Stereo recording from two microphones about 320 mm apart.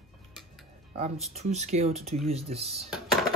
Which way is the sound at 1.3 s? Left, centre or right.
Right.